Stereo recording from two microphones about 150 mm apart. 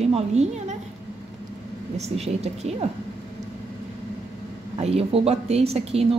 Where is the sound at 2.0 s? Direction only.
45° right (ahead or behind).